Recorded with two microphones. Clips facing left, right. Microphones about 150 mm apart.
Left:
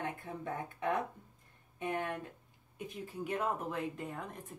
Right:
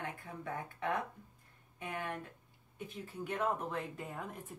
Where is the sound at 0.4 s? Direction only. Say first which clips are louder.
Even; 20° left (ahead or behind).